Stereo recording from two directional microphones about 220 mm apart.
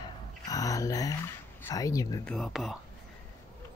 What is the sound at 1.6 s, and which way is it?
Speech, 15° left (ahead or behind).